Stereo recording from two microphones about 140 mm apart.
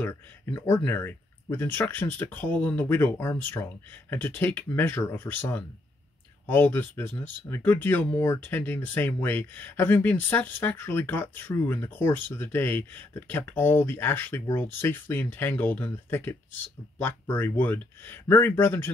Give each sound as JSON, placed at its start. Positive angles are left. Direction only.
{"t": 0.0, "sound": "speech", "side_deg": 20}